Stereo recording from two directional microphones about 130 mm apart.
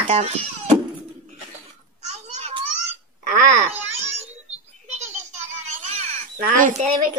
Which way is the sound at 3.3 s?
75° right (ahead or behind).